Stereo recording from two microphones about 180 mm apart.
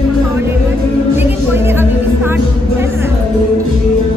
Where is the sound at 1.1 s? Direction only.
15° right (ahead or behind).